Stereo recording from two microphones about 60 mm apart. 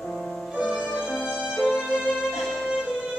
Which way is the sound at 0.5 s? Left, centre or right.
Centre.